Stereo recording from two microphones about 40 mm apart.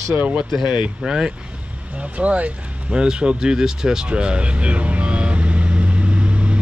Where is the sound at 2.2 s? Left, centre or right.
Right.